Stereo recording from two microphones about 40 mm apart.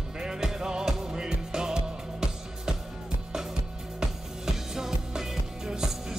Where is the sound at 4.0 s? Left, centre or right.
Centre.